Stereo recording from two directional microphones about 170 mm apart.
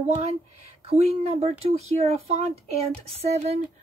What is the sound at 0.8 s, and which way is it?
Speech, 40° right (ahead or behind).